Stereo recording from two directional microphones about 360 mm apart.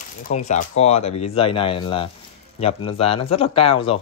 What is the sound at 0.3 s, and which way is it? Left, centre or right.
Speech, centre.